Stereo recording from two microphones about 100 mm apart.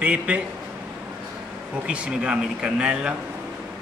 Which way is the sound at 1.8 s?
10° right (ahead or behind).